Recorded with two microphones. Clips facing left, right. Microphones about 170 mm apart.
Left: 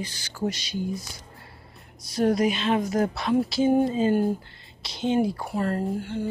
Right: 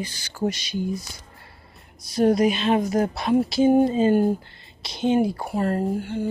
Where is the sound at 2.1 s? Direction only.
15° right (ahead or behind).